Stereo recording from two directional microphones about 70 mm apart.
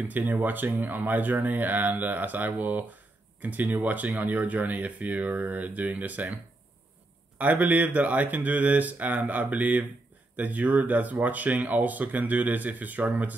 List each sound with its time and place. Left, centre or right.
0.3 s speech: right
7.3 s speech: right